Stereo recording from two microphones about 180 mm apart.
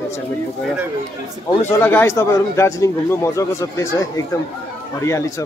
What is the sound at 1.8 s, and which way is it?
A man's voice, 15° left (ahead or behind).